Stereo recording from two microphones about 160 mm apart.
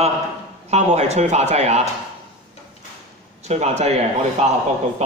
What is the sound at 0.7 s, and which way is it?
A man's voice, 45° right (ahead or behind).